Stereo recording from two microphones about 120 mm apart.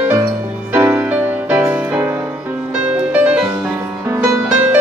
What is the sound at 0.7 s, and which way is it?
Music, 15° right (ahead or behind).